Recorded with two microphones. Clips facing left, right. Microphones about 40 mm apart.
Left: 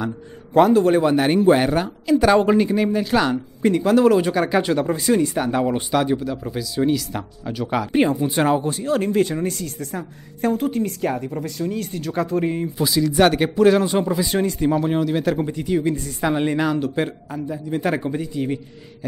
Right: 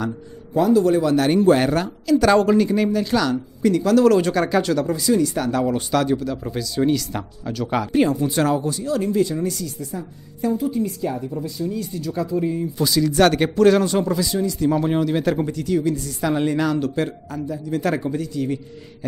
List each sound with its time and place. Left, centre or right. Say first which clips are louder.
0.6 s speech: left 2 dB; left
1.1 s speech: even; centre
3.2 s speech: left 1 dB; left
5.4 s speech: even; left; by 7.9 s centre
7.9 s speech: even; left
9.8 s speech: left 1 dB; left
12.7 s speech: even; centre
13.8 s speech: even; left
14.2 s speech: left 1 dB; left
14.8 s speech: even; centre
15.4 s speech: even; left
16.3 s speech: right 1 dB; centre